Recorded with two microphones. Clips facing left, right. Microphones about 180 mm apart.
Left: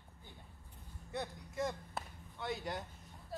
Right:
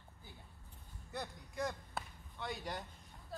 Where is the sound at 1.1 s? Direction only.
Centre (ahead or behind).